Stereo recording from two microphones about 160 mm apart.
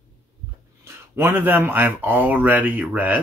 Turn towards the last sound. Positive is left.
turn(degrees=-10)  # may be behind; listen again after turning